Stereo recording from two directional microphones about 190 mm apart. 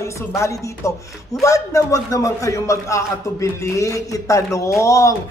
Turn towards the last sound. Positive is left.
turn(degrees=15)  # may be behind; listen again after turning